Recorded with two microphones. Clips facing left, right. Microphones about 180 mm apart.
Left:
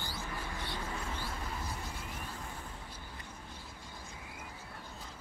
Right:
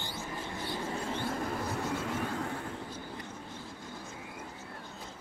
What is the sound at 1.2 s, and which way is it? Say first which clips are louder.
Vehicle: right 7 dB; 70° right (ahead or behind).